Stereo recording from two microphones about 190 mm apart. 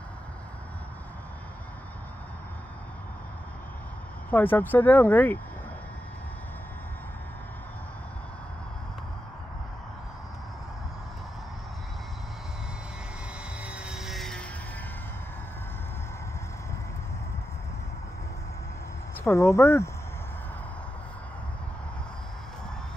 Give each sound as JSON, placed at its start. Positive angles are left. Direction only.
{"t": 4.3, "sound": "speech", "side_deg": 10}
{"t": 13.7, "sound": "vehicle", "side_deg": -5}
{"t": 19.2, "sound": "speech", "side_deg": 15}